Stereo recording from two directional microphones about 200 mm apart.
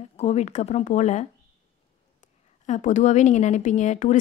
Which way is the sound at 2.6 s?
35° left (ahead or behind).